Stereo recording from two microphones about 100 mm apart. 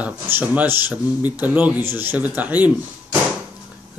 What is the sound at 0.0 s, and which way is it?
Speech, 20° right (ahead or behind).